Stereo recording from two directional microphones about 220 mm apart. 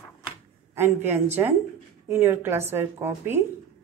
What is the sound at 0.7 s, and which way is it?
A woman's voice, 10° right (ahead or behind).